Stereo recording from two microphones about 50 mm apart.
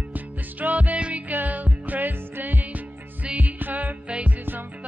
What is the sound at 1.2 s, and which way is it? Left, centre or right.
Music, right.